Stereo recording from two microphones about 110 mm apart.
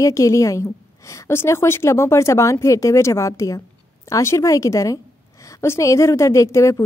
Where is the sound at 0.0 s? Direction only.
30° left (ahead or behind).